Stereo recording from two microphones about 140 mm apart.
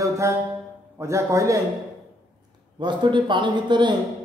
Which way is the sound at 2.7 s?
35° right (ahead or behind).